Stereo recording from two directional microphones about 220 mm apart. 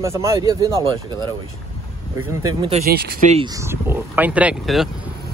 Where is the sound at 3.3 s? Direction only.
20° right (ahead or behind).